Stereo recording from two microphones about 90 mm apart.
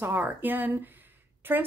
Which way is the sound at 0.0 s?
20° right (ahead or behind).